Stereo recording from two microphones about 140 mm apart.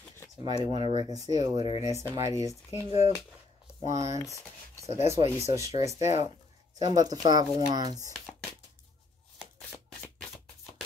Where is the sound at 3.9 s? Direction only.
25° right (ahead or behind).